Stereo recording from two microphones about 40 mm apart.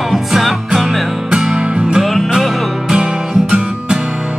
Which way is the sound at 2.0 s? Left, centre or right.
Centre.